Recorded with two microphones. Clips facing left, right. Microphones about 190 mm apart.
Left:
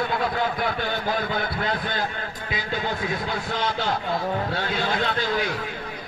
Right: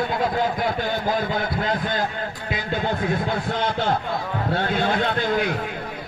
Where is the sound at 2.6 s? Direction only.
55° right (ahead or behind).